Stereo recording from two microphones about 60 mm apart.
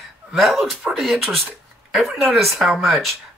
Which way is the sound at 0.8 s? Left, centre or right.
Centre.